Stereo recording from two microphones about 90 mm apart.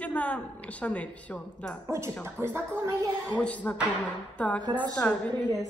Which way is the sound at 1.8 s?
30° right (ahead or behind).